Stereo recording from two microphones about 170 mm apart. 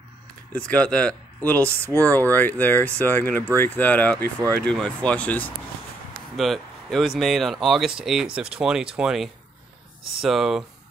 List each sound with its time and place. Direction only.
0.5 s speech: 5° left (ahead or behind)
1.9 s speech: 20° right (ahead or behind)
2.3 s speech: 10° left (ahead or behind)